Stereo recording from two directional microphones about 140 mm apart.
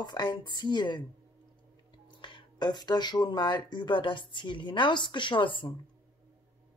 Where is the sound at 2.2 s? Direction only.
35° left (ahead or behind).